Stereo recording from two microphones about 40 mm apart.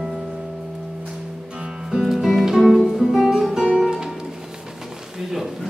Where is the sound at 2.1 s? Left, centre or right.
Centre.